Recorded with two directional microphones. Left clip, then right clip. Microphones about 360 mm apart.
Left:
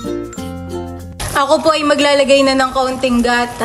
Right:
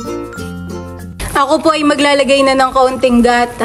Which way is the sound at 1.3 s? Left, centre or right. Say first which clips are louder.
Right 1 dB; centre.